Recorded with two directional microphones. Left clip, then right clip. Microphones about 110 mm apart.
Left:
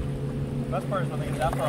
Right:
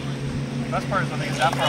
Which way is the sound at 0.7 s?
25° right (ahead or behind).